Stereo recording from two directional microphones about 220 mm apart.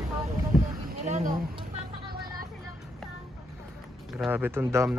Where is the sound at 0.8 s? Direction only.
35° right (ahead or behind).